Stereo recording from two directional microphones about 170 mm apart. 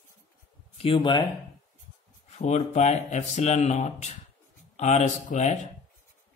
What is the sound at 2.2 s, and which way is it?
Speech, 45° left (ahead or behind).